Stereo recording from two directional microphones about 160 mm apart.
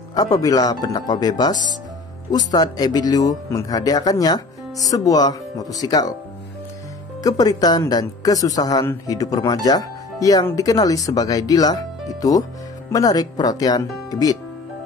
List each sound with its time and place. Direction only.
0.1 s speech: 25° left (ahead or behind)
7.2 s speech: 25° left (ahead or behind)